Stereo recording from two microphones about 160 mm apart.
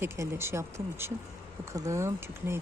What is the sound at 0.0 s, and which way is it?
Speech, 15° right (ahead or behind).